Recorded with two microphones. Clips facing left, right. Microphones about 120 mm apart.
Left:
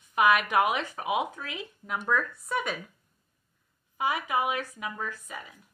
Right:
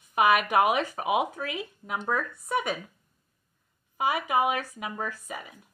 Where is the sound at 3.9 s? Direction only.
10° right (ahead or behind).